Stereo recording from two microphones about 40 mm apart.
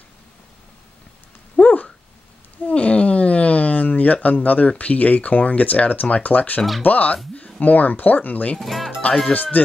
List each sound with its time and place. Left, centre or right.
1.6 s a sound: left
2.7 s speech: left
7.3 s a sound: left
7.6 s speech: left
8.5 s speech: centre
9.3 s speech: left